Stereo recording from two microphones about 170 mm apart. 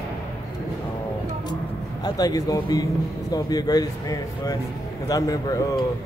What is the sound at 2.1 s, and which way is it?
Speech, 20° left (ahead or behind).